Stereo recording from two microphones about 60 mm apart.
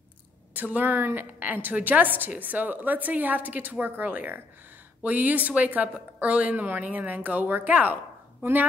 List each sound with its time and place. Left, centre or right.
0.6 s a woman's voice: right